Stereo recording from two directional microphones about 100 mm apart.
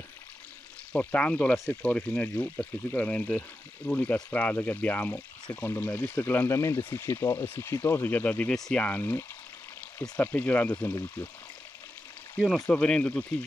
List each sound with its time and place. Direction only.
0.9 s speech: 15° left (ahead or behind)
12.4 s speech: centre (ahead or behind)
12.6 s speech: 10° left (ahead or behind)